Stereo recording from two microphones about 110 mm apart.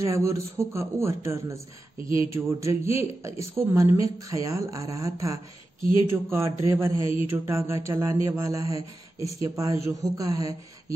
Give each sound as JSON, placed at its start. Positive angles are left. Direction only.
{"t": 0.0, "sound": "speech", "side_deg": -30}